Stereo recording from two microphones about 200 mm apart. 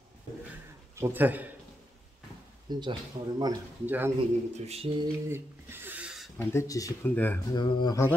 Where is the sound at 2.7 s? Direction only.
20° right (ahead or behind).